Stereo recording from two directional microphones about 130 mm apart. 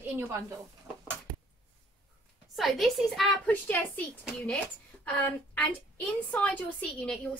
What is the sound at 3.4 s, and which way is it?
Speech, 10° left (ahead or behind).